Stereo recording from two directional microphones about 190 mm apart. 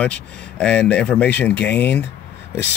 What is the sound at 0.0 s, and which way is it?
Speech, 5° left (ahead or behind).